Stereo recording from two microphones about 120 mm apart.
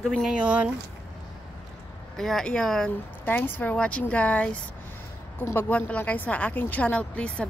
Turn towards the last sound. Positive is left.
turn(degrees=10)  # may be behind; listen again after turning